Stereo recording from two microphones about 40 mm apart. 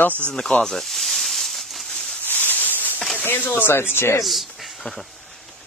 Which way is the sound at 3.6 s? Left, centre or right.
Left.